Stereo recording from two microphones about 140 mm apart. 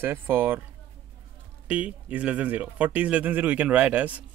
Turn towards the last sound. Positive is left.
turn(degrees=-10)  # may be behind; listen again after turning